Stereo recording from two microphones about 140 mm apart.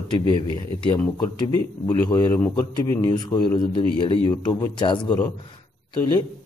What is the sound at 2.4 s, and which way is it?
Speech, 15° left (ahead or behind).